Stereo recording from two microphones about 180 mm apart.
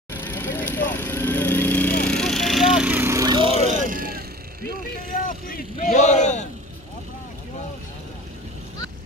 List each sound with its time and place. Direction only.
0.1 s vehicle: 10° left (ahead or behind); by 3.5 s 25° right (ahead or behind)
3.8 s a sound: 50° right (ahead or behind)
5.2 s vehicle: 50° left (ahead or behind)